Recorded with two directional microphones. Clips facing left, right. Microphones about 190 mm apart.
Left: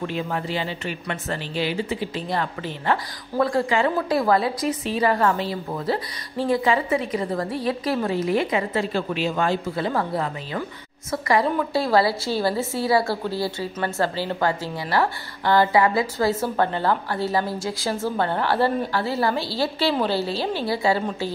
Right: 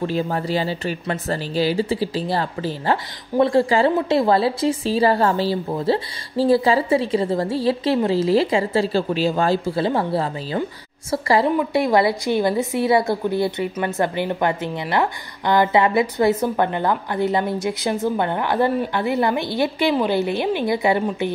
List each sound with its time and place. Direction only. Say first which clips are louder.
0.0 s a woman's voice: right 4 dB; 35° right (ahead or behind)
11.4 s a woman's voice: right 4 dB; 15° right (ahead or behind)